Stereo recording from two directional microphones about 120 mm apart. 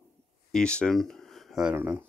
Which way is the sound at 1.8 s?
20° right (ahead or behind).